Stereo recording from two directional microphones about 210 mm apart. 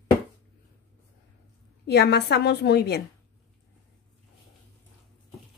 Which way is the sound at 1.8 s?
50° left (ahead or behind).